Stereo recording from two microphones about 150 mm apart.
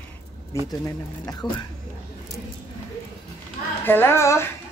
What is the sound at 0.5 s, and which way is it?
A woman's voice, 20° left (ahead or behind).